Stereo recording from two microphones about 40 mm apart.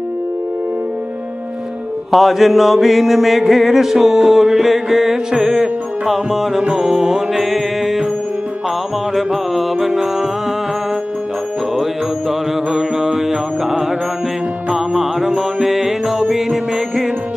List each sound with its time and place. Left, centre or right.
2.0 s mantra: centre
7.3 s mantra: centre
9.1 s mantra: centre
11.7 s mantra: centre
15.0 s music: centre